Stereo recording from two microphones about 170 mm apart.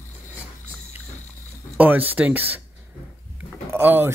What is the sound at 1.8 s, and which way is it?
Speech, 10° right (ahead or behind).